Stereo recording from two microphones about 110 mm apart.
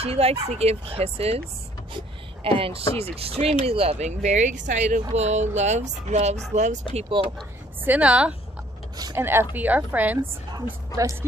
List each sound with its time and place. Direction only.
0.0 s speech: 65° right (ahead or behind)
2.0 s speech: 55° right (ahead or behind); by 7.1 s 80° right
7.8 s speech: 15° right (ahead or behind)
9.1 s speech: 20° right (ahead or behind)